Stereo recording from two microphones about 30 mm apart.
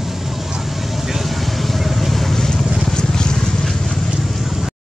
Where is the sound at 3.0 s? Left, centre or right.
Left.